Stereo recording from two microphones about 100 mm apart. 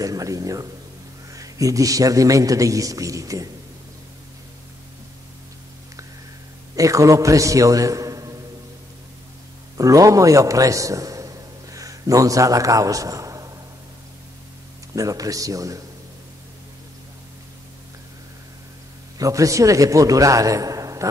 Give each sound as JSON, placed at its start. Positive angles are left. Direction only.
{"t": 0.0, "sound": "a man's voice", "side_deg": -35}
{"t": 6.7, "sound": "a man's voice", "side_deg": -35}
{"t": 9.8, "sound": "a man's voice", "side_deg": -35}
{"t": 15.0, "sound": "a man's voice", "side_deg": -35}
{"t": 19.1, "sound": "a man's voice", "side_deg": -35}